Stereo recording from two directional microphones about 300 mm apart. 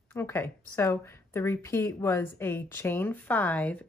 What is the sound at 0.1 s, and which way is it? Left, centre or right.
Speech, centre.